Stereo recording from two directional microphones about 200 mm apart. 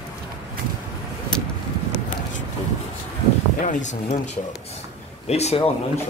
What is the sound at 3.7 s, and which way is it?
Speech, 40° left (ahead or behind).